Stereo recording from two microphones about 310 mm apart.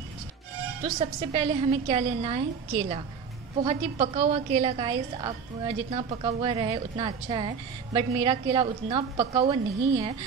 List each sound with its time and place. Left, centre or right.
0.8 s speech: centre